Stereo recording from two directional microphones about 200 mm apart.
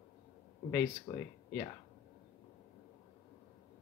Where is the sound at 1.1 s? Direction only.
20° left (ahead or behind).